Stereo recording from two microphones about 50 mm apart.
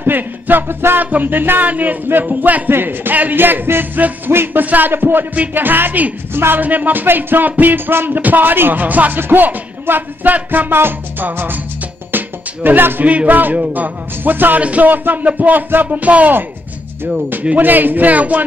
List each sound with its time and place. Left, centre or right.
0.0 s music: right
1.1 s speech: right
2.7 s music: right
3.2 s speech: right
10.8 s music: right
13.0 s speech: right
17.6 s speech: right